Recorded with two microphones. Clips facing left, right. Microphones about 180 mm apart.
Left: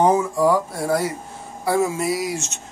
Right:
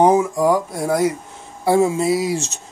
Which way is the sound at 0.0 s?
15° right (ahead or behind).